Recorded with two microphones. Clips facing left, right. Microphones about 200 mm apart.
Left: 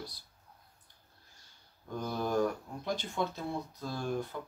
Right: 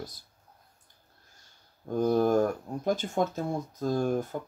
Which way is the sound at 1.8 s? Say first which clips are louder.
Right 11 dB; 45° right (ahead or behind).